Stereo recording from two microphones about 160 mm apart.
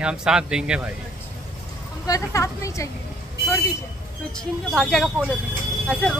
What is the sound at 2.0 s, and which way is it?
Speech, 20° left (ahead or behind).